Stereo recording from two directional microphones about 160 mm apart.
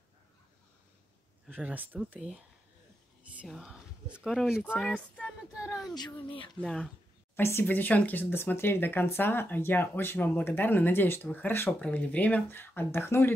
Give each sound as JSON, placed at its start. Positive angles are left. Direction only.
{"t": 1.5, "sound": "speech", "side_deg": -10}
{"t": 5.5, "sound": "a sound", "side_deg": -5}
{"t": 5.9, "sound": "speech", "side_deg": 30}
{"t": 6.6, "sound": "speech", "side_deg": 5}